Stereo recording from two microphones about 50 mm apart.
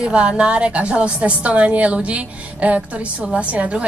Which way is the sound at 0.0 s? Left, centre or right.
Right.